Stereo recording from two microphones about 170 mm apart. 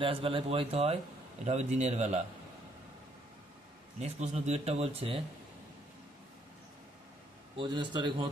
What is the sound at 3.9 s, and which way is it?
A man's voice, 40° right (ahead or behind).